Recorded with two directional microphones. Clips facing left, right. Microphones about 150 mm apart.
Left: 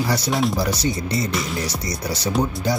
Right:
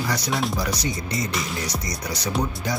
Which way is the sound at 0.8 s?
30° left (ahead or behind).